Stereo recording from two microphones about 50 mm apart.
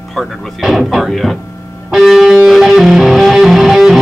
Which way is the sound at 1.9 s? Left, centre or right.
Centre.